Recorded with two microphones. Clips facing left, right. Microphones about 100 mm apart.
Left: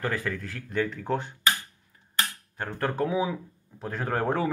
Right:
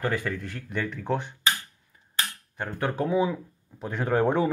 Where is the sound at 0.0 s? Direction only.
Centre (ahead or behind).